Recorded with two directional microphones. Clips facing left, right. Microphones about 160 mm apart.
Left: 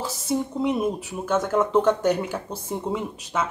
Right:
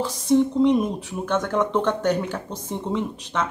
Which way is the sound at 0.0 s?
5° left (ahead or behind).